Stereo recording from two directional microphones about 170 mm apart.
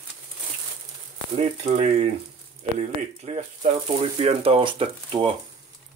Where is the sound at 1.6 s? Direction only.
40° right (ahead or behind).